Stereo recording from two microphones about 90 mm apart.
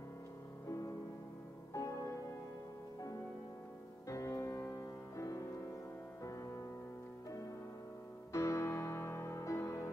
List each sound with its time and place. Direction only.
1.7 s music: 35° left (ahead or behind)
4.1 s music: 35° left (ahead or behind)
8.3 s music: 35° left (ahead or behind)